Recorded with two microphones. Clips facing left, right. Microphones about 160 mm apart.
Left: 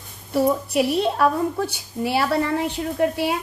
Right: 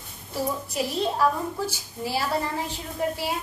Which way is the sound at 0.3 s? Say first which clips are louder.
Left 9 dB; 65° left (ahead or behind).